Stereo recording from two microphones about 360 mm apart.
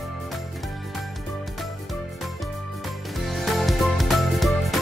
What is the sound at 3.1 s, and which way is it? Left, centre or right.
Music, centre.